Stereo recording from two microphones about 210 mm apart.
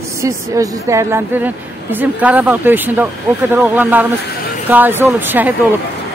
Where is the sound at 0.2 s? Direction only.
15° right (ahead or behind).